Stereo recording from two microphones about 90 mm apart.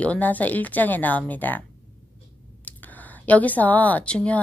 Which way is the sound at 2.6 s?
15° left (ahead or behind).